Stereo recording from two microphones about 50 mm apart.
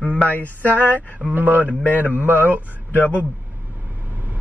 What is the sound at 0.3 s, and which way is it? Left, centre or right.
Speech, left.